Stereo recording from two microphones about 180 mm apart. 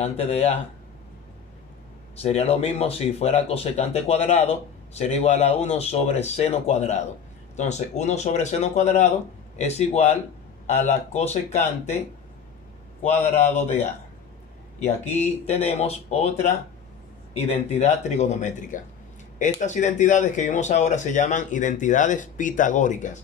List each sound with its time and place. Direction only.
0.0 s speech: 35° left (ahead or behind)
2.2 s speech: 35° left (ahead or behind)
13.0 s speech: 40° left (ahead or behind)